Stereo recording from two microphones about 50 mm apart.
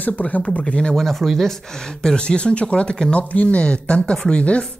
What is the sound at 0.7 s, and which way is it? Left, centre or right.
Speech, centre.